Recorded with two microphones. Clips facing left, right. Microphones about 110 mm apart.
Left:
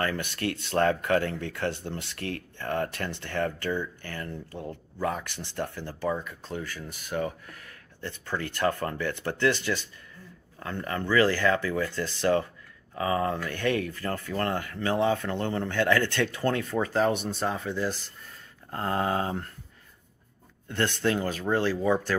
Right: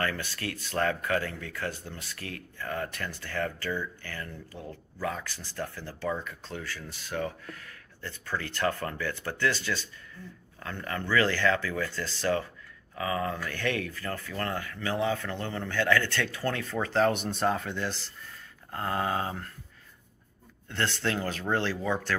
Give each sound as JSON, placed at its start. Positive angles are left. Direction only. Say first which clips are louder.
{"t": 0.0, "sound": "speech", "louder": "left 3 dB", "side_deg": 20}
{"t": 12.9, "sound": "speech", "louder": "left 4 dB", "side_deg": 30}
{"t": 13.4, "sound": "speech", "louder": "left 4 dB", "side_deg": 15}
{"t": 16.7, "sound": "speech", "louder": "right 3 dB", "side_deg": 10}
{"t": 18.7, "sound": "speech", "louder": "left 2 dB", "side_deg": 25}
{"t": 20.6, "sound": "speech", "louder": "left 4 dB", "side_deg": 15}